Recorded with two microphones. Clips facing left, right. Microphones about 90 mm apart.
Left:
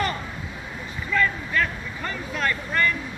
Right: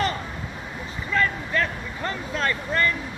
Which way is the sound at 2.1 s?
30° right (ahead or behind).